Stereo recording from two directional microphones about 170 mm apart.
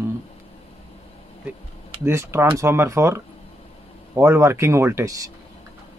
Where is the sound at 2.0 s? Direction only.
15° right (ahead or behind).